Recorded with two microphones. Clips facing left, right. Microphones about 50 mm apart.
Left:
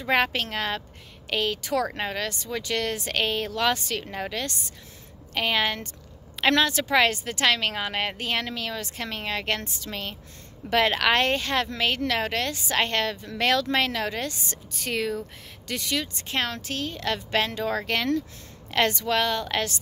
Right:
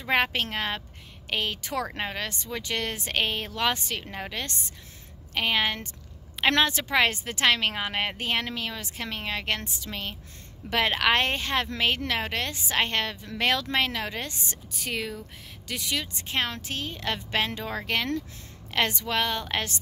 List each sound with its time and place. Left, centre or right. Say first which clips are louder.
0.1 s a woman's voice: left 1 dB; right